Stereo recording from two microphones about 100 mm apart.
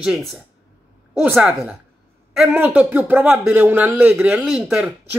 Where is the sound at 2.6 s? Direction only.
15° right (ahead or behind).